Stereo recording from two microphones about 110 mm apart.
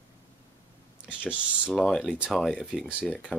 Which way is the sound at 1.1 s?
15° left (ahead or behind).